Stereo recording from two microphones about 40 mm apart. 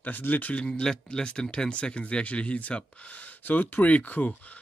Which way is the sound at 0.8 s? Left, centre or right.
Centre.